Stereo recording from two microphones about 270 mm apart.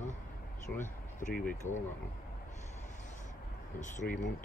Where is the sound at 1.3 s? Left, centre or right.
Centre.